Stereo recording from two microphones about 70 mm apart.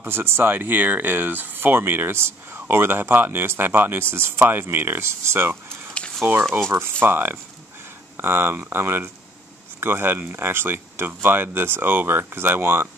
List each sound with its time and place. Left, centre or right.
0.0 s speech: right